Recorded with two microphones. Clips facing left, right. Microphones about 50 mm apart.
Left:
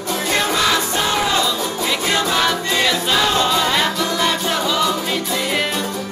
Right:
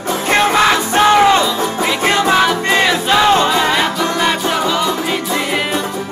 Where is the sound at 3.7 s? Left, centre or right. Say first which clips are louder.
Right 3 dB; centre.